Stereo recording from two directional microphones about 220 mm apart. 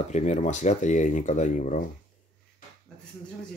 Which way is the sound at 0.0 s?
30° left (ahead or behind).